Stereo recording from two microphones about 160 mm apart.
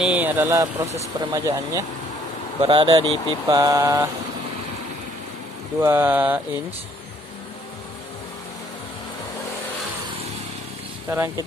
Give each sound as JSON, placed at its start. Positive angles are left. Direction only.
{"t": 0.0, "sound": "speech", "side_deg": -10}
{"t": 5.8, "sound": "speech", "side_deg": -15}
{"t": 11.1, "sound": "speech", "side_deg": -15}